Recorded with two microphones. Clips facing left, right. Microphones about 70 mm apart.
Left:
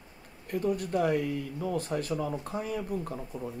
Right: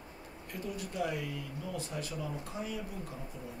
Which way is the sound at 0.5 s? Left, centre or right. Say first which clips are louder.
Left 11 dB; left.